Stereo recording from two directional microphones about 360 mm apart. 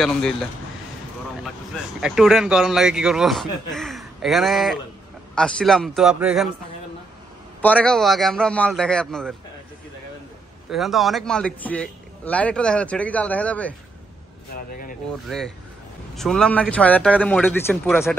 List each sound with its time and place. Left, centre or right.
0.0 s speech: centre
2.0 s speech: centre
7.6 s speech: centre
10.7 s speech: centre
14.5 s speech: left
15.2 s speech: centre